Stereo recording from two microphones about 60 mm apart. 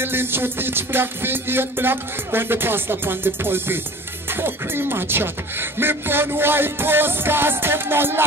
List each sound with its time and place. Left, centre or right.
0.0 s speech: right